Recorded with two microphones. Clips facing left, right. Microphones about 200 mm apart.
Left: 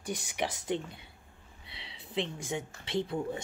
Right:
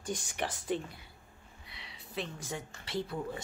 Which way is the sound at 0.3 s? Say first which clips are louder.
Left 2 dB; 10° left (ahead or behind).